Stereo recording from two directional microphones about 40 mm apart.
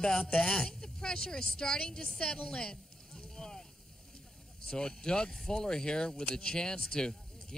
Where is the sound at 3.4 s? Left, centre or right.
Centre.